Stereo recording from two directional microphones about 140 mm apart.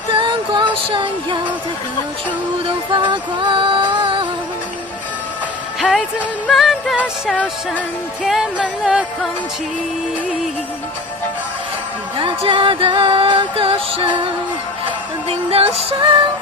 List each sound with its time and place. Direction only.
0.1 s music: 35° right (ahead or behind)
2.9 s music: 35° right (ahead or behind)
5.8 s music: 5° right (ahead or behind)
8.2 s music: 5° right (ahead or behind)
12.2 s music: 35° right (ahead or behind)
15.2 s music: 45° right (ahead or behind)